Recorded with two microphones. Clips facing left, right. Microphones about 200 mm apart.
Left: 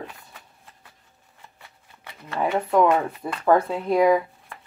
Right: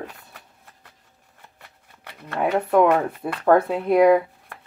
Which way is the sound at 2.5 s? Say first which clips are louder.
Right 2 dB; 60° right (ahead or behind).